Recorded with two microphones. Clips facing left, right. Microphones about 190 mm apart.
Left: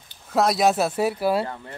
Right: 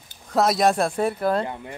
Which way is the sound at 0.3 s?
Centre (ahead or behind).